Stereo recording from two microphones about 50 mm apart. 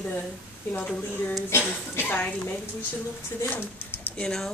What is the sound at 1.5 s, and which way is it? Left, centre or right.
Speech, left.